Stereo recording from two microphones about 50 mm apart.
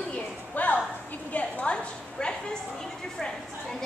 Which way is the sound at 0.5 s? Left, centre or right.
Left.